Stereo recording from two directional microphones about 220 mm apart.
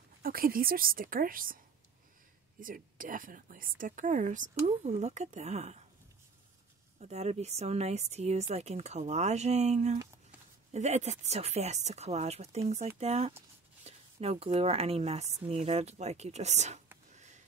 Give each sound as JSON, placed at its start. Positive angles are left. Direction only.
{"t": 0.2, "sound": "a woman's voice", "side_deg": -40}
{"t": 2.6, "sound": "a woman's voice", "side_deg": -40}
{"t": 7.0, "sound": "speech", "side_deg": -30}